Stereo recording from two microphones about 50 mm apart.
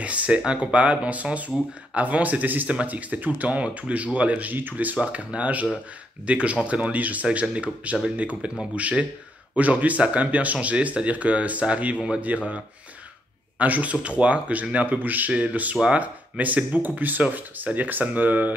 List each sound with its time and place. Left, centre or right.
0.0 s speech: right
4.9 s speech: right